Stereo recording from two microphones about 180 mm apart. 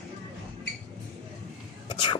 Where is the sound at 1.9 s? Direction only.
25° left (ahead or behind).